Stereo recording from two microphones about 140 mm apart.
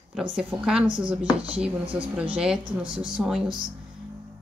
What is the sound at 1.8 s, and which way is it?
Speech, 40° right (ahead or behind).